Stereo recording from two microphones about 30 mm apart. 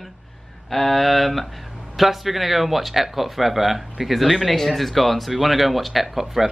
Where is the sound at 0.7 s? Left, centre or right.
Centre.